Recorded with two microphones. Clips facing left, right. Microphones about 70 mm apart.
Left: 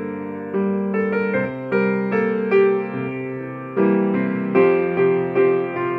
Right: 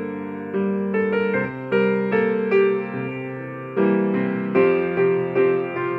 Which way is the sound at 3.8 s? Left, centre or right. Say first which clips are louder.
Left 1 dB; left.